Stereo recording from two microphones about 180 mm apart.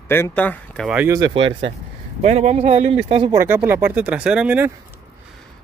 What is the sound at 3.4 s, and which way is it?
Speech, 10° right (ahead or behind).